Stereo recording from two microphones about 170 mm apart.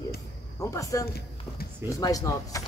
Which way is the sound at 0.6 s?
20° left (ahead or behind).